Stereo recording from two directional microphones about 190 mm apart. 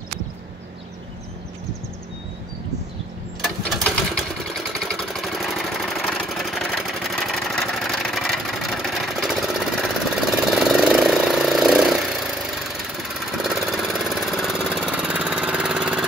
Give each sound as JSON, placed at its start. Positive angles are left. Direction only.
{"t": 3.4, "sound": "sewing machine", "side_deg": 0}
{"t": 10.4, "sound": "a sound", "side_deg": 0}
{"t": 13.4, "sound": "engine", "side_deg": 0}